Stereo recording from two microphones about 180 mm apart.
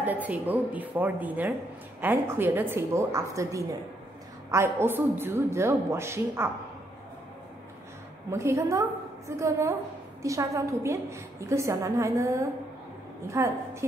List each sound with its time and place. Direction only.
0.0 s a woman's voice: 10° right (ahead or behind)
8.3 s a woman's voice: 15° right (ahead or behind)